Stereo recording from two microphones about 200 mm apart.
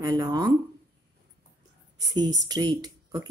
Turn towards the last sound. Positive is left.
turn(degrees=-20)  # may be behind; listen again after turning